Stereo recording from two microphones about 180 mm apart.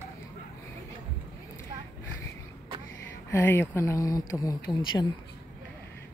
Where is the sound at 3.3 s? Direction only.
15° left (ahead or behind).